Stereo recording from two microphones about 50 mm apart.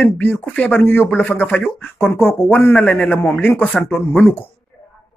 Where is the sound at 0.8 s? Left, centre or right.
Left.